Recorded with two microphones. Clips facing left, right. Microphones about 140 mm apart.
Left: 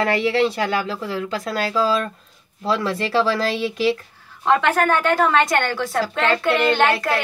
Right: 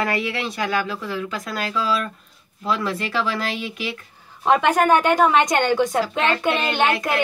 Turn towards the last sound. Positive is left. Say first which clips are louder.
# left 3 dB
turn(degrees=-20)  # may be behind; listen again after turning